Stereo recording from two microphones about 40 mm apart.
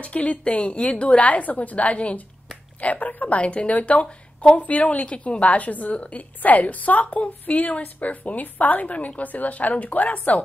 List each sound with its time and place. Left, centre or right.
0.0 s a woman's voice: left